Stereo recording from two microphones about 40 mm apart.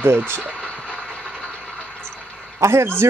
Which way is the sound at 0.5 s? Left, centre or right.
Left.